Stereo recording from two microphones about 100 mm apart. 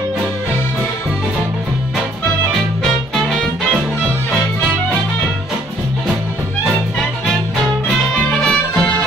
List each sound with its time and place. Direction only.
2.8 s music: 5° left (ahead or behind)
6.6 s music: centre (ahead or behind)